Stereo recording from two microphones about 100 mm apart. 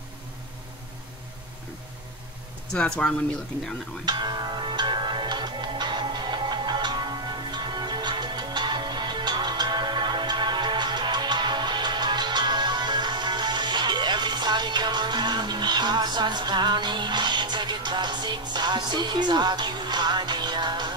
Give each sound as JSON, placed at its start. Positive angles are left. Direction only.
{"t": 2.7, "sound": "speech", "side_deg": 10}
{"t": 4.0, "sound": "music", "side_deg": -45}